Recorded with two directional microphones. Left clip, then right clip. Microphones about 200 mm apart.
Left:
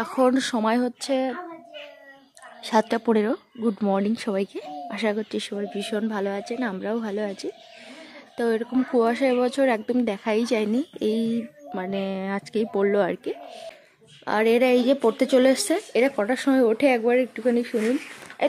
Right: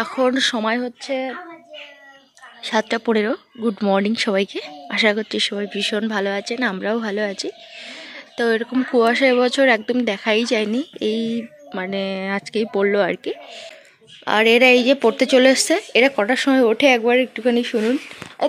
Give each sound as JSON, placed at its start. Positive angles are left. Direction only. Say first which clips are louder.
{"t": 0.2, "sound": "speech", "louder": "right 3 dB", "side_deg": 15}
{"t": 0.8, "sound": "a sound", "louder": "right 1 dB", "side_deg": 35}
{"t": 2.6, "sound": "speech", "louder": "right 2 dB", "side_deg": 20}